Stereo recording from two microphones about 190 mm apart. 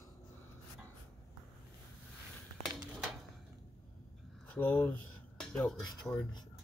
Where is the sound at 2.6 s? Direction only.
Centre (ahead or behind).